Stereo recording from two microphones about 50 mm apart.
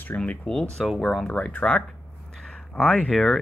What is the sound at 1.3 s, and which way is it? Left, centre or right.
Speech, left.